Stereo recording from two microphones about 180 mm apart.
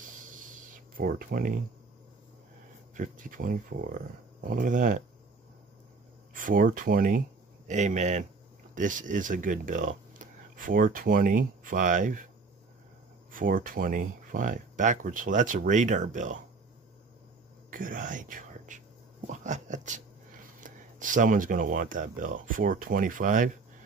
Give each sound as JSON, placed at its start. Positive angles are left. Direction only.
{"t": 0.0, "sound": "a sound", "side_deg": -45}
{"t": 3.0, "sound": "speech", "side_deg": -50}
{"t": 6.3, "sound": "speech", "side_deg": -50}
{"t": 13.3, "sound": "speech", "side_deg": -50}
{"t": 17.6, "sound": "speech", "side_deg": -50}
{"t": 19.2, "sound": "a sound", "side_deg": -45}
{"t": 20.6, "sound": "speech", "side_deg": -45}